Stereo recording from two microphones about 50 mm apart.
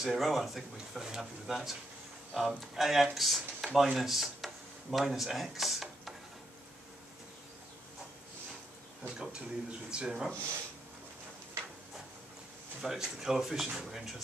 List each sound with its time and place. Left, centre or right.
0.0 s speech: centre
9.0 s speech: centre
12.8 s speech: centre